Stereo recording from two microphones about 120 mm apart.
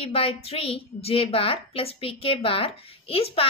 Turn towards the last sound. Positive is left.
turn(degrees=50)  # may be behind; listen again after turning